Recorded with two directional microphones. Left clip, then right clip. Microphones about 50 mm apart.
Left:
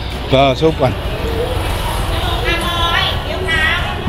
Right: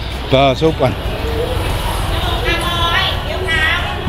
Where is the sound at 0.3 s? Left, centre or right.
Right.